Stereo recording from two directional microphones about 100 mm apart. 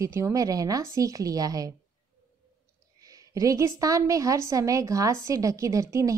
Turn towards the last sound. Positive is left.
turn(degrees=-30)  # may be behind; listen again after turning